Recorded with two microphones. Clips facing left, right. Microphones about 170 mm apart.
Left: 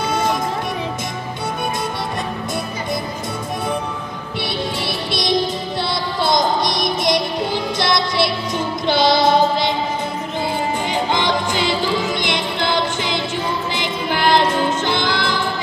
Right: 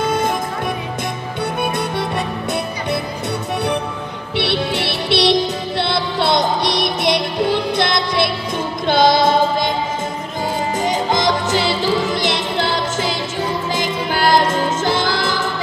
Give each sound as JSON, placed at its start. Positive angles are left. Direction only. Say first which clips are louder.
{"t": 0.0, "sound": "music", "louder": "right 1 dB", "side_deg": -55}
{"t": 4.4, "sound": "music", "louder": "right 5 dB", "side_deg": -70}
{"t": 8.8, "sound": "female singing", "louder": "right 2 dB", "side_deg": -50}
{"t": 10.9, "sound": "music", "louder": "right 3 dB", "side_deg": -40}